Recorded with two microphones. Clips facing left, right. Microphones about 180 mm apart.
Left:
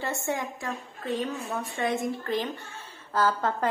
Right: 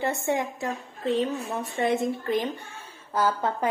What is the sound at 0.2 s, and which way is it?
A woman's voice, 25° right (ahead or behind).